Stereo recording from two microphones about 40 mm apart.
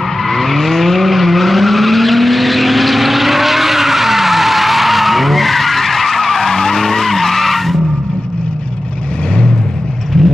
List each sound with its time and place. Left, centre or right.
0.3 s vehicle: centre
10.1 s vehicle: centre